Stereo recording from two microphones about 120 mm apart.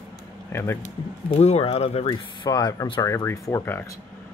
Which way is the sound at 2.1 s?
35° left (ahead or behind).